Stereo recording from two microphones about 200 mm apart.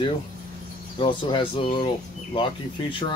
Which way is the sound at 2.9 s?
25° left (ahead or behind).